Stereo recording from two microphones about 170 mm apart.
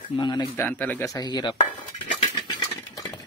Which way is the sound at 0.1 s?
25° left (ahead or behind).